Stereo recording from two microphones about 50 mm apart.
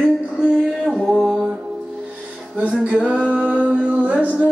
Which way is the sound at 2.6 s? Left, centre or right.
Right.